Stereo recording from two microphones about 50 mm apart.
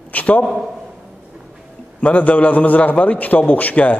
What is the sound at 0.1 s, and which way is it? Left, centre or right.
Speech, left.